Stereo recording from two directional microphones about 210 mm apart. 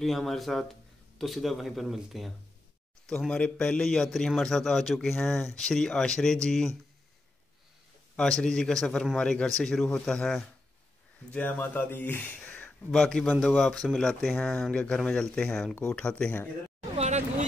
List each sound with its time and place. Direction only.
0.0 s speech: centre (ahead or behind)
8.2 s speech: 5° left (ahead or behind)
16.9 s vehicle: 30° right (ahead or behind)